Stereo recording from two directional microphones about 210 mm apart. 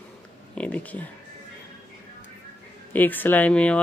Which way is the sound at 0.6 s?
5° left (ahead or behind).